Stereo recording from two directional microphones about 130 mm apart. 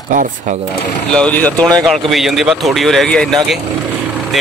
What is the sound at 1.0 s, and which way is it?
Speech, 10° left (ahead or behind).